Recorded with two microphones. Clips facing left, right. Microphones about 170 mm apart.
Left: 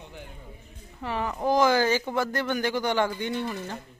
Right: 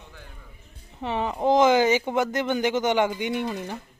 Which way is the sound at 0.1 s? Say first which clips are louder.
Left 4 dB; 20° left (ahead or behind).